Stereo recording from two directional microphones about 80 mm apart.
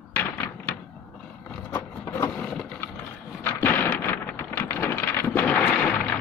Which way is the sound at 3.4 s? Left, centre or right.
Left.